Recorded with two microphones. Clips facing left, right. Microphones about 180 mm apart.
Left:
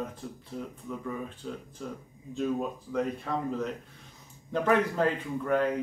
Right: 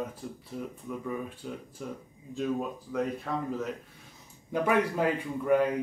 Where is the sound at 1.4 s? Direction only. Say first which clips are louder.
Even; 10° right (ahead or behind).